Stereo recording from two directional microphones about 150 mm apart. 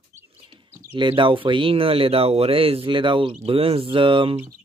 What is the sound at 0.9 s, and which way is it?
Speech, 35° right (ahead or behind).